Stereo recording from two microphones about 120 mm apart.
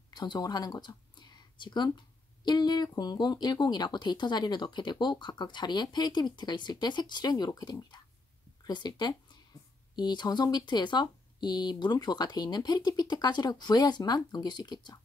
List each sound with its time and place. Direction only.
0.1 s speech: 35° left (ahead or behind)